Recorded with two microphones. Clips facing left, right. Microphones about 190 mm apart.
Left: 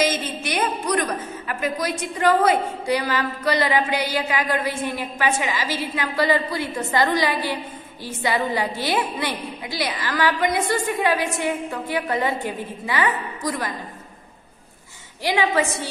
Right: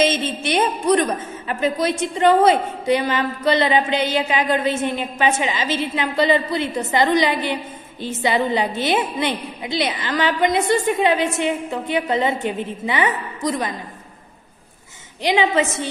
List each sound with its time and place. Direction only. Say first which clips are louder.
0.0 s a woman's voice: right 4 dB; 25° right (ahead or behind)
15.2 s a woman's voice: right 3 dB; 20° right (ahead or behind)